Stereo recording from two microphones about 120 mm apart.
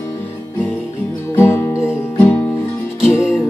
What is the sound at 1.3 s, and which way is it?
Music, 20° left (ahead or behind).